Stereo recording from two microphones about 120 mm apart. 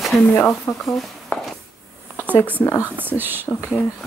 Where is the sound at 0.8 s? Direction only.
Centre (ahead or behind).